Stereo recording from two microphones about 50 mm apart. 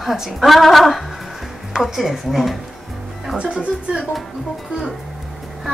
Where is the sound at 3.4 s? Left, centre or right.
Right.